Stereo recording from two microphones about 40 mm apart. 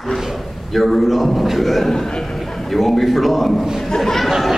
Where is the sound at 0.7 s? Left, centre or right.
Centre.